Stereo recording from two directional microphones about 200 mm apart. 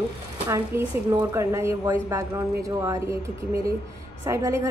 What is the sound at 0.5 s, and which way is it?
A woman's voice, 15° right (ahead or behind).